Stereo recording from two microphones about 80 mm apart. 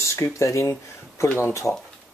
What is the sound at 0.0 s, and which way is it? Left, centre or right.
Speech, left.